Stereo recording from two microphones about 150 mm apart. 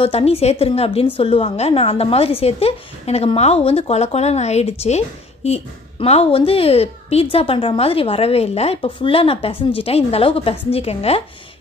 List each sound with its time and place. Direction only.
0.0 s a woman's voice: 40° left (ahead or behind)